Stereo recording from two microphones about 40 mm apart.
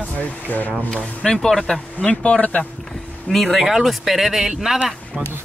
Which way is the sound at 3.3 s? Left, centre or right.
Left.